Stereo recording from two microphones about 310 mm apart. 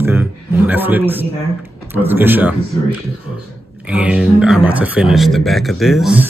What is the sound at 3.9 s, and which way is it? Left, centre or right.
Speech, centre.